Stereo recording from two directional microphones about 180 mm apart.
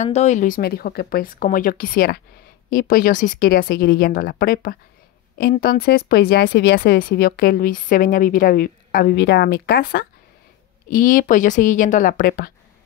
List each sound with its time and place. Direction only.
0.0 s speech: 40° left (ahead or behind)